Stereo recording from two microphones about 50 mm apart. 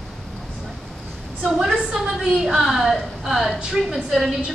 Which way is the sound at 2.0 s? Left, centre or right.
Right.